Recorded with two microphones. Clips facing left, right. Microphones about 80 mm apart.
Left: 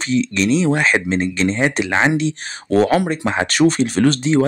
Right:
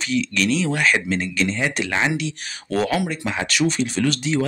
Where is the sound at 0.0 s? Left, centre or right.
Left.